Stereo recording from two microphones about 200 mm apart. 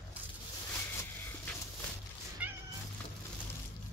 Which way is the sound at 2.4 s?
5° right (ahead or behind).